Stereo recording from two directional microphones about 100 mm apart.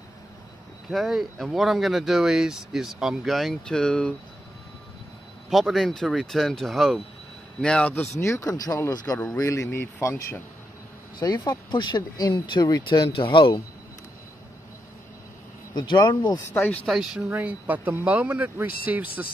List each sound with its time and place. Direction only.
0.8 s speech: centre (ahead or behind)
5.5 s a man's voice: centre (ahead or behind)
8.2 s speech: 30° left (ahead or behind)
11.1 s speech: 45° left (ahead or behind)
13.1 s speech: 55° left (ahead or behind)
15.7 s speech: 50° left (ahead or behind)
16.5 s speech: 20° left (ahead or behind)
16.8 s speech: 5° right (ahead or behind)
17.4 s speech: 15° right (ahead or behind)